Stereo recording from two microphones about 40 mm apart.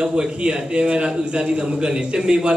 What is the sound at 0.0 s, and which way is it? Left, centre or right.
A man's voice, right.